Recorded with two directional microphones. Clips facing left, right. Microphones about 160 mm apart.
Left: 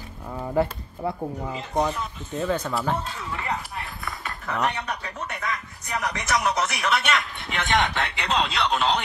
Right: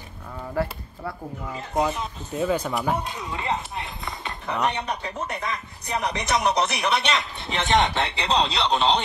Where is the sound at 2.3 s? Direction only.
10° right (ahead or behind).